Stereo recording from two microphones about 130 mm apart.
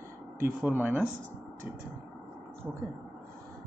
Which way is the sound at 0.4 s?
15° right (ahead or behind).